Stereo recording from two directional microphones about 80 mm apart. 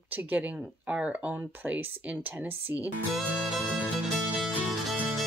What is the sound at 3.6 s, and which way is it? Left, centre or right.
Music, right.